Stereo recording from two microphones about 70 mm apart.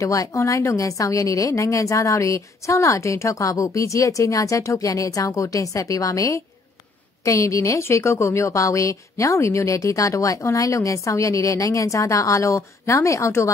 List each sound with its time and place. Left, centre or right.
0.0 s a woman's voice: left